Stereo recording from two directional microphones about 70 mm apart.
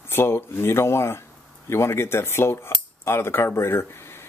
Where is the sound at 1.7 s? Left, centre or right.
Left.